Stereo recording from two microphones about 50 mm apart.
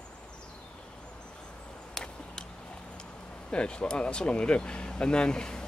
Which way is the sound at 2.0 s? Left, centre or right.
Centre.